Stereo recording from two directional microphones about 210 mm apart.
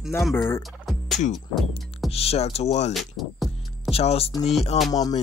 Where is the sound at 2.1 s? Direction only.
30° left (ahead or behind).